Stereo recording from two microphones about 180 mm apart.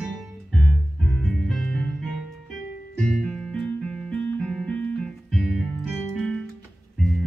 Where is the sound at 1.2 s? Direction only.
5° left (ahead or behind).